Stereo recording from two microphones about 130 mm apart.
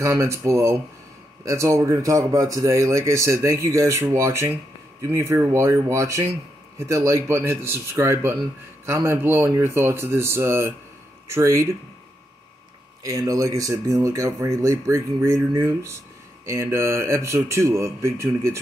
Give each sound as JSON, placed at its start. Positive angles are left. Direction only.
{"t": 0.0, "sound": "speech", "side_deg": -25}
{"t": 13.0, "sound": "speech", "side_deg": -25}